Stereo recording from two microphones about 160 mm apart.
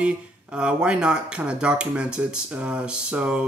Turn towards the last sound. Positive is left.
turn(degrees=-10)  # may be behind; listen again after turning